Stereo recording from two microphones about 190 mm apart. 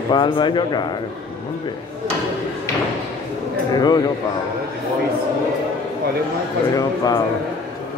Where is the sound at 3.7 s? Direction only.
20° left (ahead or behind).